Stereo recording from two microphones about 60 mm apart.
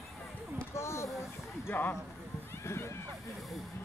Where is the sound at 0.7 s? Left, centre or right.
Left.